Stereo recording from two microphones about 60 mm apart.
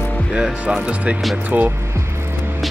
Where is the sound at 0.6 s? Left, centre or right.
Centre.